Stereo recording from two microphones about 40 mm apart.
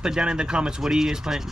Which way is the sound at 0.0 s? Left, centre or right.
Centre.